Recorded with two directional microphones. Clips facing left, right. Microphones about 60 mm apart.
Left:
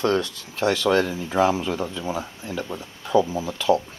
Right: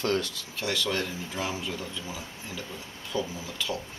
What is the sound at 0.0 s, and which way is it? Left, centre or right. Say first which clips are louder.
Speech: left 6 dB; left.